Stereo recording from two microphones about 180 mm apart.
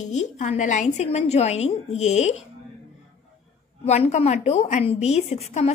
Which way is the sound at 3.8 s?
35° left (ahead or behind).